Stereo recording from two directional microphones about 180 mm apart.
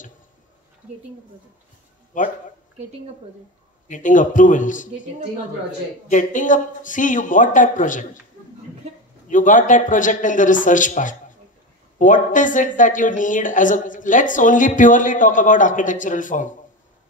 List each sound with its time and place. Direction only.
2.1 s speech: 45° left (ahead or behind)
3.8 s speech: 45° left (ahead or behind)
6.0 s speech: 45° left (ahead or behind)
9.3 s speech: 45° left (ahead or behind)